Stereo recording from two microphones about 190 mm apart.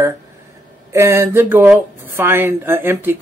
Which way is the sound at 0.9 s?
15° right (ahead or behind).